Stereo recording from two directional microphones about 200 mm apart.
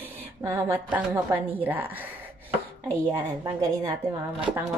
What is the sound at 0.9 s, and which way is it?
A woman's voice, 10° right (ahead or behind).